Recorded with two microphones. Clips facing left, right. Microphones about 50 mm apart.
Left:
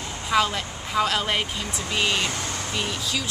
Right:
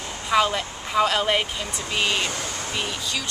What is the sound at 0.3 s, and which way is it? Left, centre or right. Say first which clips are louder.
Speech: right 2 dB; centre.